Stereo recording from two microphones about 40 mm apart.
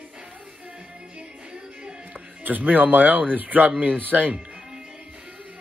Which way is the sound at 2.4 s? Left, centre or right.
Right.